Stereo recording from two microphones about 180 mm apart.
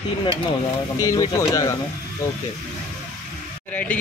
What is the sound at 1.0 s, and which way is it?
Speech, 20° left (ahead or behind).